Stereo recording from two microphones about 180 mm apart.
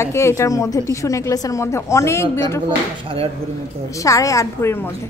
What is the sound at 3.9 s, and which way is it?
A woman's voice, 20° left (ahead or behind).